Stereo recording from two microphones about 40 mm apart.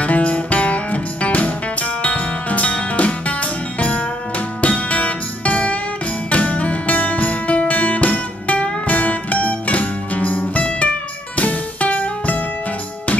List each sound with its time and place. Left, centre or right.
0.0 s music: left